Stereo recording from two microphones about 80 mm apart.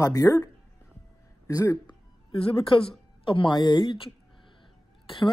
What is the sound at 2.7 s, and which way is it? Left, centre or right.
Speech, left.